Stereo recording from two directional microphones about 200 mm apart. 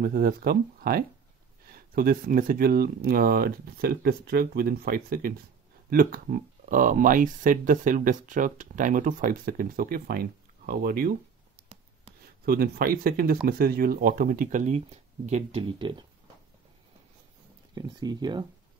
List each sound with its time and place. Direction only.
0.0 s speech: 50° right (ahead or behind)
12.4 s speech: 50° right (ahead or behind); by 16.1 s 25° right (ahead or behind)
17.7 s speech: 20° right (ahead or behind)